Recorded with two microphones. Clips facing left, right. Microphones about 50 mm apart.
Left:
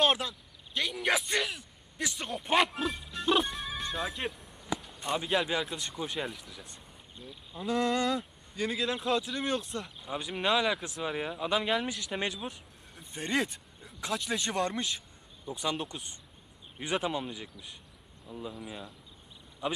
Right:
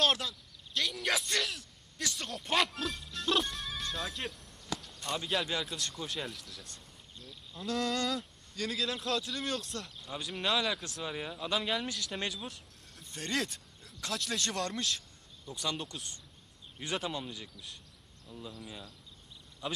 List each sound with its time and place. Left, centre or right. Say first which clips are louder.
0.0 s speech: left 3 dB; centre